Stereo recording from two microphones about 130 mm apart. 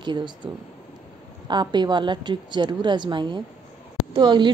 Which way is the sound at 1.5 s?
35° right (ahead or behind).